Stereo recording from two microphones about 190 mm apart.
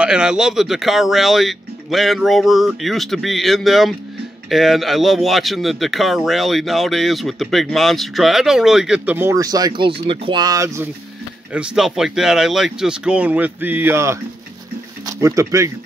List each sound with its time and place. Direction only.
0.0 s speech: 5° right (ahead or behind)
11.5 s speech: 5° right (ahead or behind)